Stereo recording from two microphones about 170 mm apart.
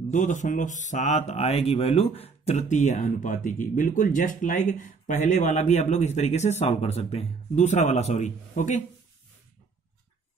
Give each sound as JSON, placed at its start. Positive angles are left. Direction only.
{"t": 0.1, "sound": "a man's voice", "side_deg": 45}